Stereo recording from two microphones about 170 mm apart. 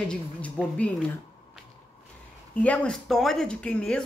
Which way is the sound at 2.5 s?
10° left (ahead or behind).